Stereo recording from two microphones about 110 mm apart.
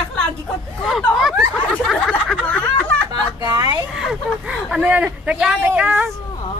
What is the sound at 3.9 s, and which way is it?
Speech, 5° right (ahead or behind).